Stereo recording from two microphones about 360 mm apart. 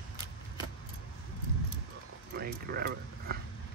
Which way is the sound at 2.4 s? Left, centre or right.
Right.